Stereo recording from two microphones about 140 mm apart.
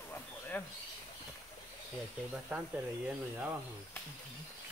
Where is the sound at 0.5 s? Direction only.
15° left (ahead or behind).